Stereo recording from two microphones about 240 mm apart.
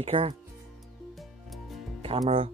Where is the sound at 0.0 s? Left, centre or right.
Right.